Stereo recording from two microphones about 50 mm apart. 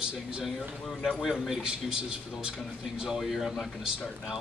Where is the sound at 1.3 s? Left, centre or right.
Centre.